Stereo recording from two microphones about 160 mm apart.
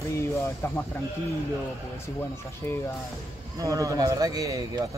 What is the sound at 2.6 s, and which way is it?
Speech, 15° left (ahead or behind).